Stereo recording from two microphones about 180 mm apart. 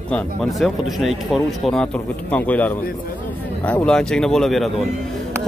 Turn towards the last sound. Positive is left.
turn(degrees=0)  # may be behind; listen again after turning